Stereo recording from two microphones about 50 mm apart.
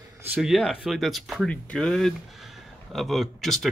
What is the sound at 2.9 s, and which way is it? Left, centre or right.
Speech, centre.